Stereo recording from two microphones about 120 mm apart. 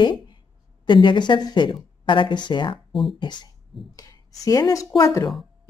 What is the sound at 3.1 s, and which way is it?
Speech, 40° left (ahead or behind).